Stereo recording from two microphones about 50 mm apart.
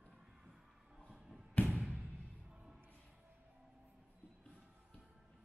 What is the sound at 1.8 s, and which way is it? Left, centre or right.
Music, centre.